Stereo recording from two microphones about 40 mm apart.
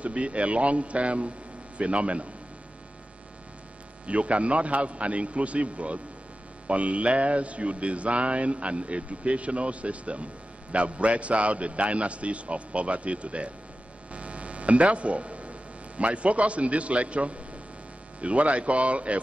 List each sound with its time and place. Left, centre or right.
0.0 s speech: right
4.0 s speech: right
14.1 s hum: right
16.0 s speech: right